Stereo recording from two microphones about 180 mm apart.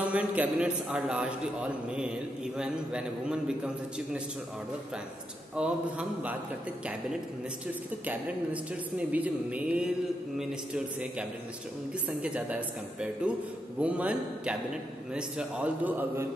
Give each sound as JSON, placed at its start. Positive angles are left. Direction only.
{"t": 0.0, "sound": "a man's voice", "side_deg": -5}
{"t": 5.6, "sound": "a woman's voice", "side_deg": -5}
{"t": 8.9, "sound": "a woman's voice", "side_deg": -10}